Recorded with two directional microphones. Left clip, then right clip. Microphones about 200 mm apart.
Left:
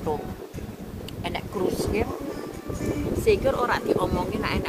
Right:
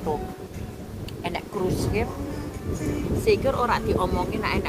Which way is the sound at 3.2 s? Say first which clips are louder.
Even; 5° left (ahead or behind).